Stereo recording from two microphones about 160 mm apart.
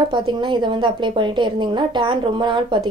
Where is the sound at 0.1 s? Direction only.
30° right (ahead or behind).